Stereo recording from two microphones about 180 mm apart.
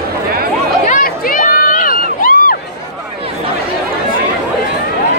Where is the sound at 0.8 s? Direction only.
50° left (ahead or behind).